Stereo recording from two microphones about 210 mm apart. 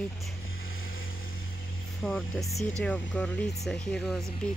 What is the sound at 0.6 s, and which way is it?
Vehicle, 75° left (ahead or behind).